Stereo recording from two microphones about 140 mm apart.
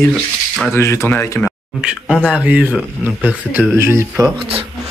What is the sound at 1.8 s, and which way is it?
Speech, 5° right (ahead or behind).